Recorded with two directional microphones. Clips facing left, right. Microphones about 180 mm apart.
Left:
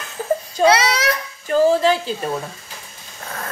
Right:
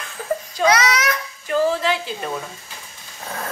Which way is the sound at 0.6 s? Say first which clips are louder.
Left 2 dB; 30° left (ahead or behind).